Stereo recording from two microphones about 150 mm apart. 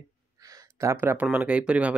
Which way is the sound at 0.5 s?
20° right (ahead or behind).